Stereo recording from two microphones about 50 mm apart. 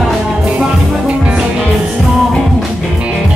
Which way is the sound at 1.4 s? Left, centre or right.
Centre.